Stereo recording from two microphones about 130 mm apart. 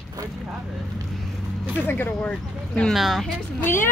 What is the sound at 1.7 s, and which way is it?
Speech, 15° left (ahead or behind).